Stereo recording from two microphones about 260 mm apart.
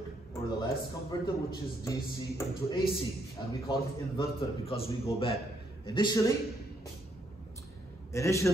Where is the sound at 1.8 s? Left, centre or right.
Centre.